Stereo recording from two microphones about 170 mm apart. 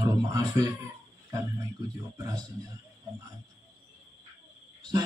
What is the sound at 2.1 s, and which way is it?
Speech, 20° right (ahead or behind).